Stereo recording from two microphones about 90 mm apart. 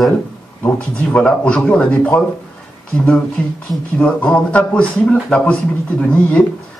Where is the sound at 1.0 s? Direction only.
10° left (ahead or behind).